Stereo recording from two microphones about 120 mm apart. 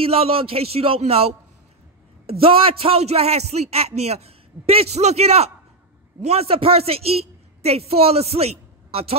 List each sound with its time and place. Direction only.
0.0 s a man's voice: 55° right (ahead or behind)